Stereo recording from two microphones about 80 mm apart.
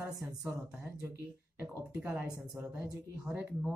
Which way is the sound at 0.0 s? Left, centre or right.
Right.